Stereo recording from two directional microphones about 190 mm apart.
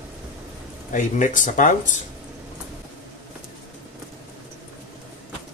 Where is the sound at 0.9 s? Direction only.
40° left (ahead or behind).